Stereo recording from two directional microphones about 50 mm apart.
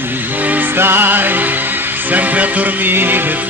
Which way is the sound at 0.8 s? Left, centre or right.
Right.